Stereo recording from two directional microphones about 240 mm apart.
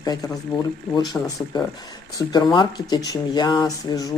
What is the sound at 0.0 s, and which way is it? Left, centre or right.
Speech, centre.